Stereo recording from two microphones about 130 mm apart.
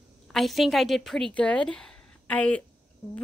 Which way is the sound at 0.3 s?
Centre (ahead or behind).